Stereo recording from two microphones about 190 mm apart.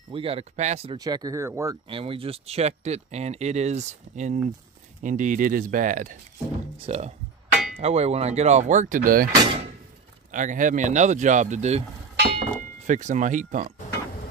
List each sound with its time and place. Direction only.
0.1 s speech: 30° right (ahead or behind)
0.9 s speech: 20° right (ahead or behind)
1.9 s speech: 30° right (ahead or behind); by 9.3 s 45° right (ahead or behind)
9.4 s speech: 30° right (ahead or behind)
10.3 s speech: 40° right (ahead or behind)